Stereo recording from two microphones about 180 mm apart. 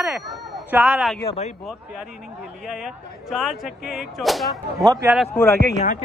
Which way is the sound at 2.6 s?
Centre (ahead or behind).